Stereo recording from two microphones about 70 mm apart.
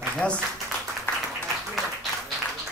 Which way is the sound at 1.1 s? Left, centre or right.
Left.